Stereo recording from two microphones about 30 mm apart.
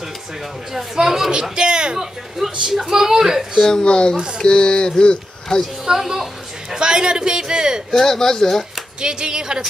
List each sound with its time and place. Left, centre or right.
0.7 s a child's voice: centre
1.3 s a man's voice: right
2.4 s a child's voice: centre
3.8 s speech: left
5.9 s a child's voice: centre
6.8 s a man's voice: right
7.9 s speech: centre
9.0 s a man's voice: right